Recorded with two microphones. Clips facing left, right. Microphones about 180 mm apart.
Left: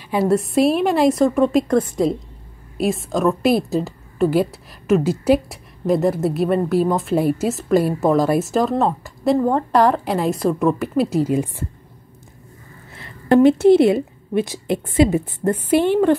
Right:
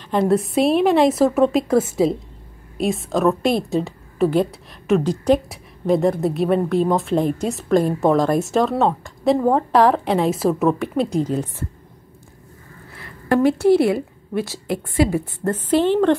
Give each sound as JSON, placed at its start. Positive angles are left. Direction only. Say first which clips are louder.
{"t": 0.0, "sound": "a woman's voice", "louder": "even", "side_deg": 5}
{"t": 12.9, "sound": "a woman's voice", "louder": "left 4 dB", "side_deg": 25}